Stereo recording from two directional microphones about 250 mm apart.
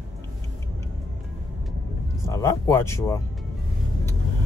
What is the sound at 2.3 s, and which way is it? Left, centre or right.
Speech, centre.